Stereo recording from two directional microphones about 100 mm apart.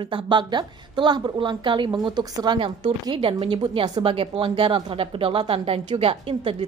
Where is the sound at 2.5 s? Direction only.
60° right (ahead or behind).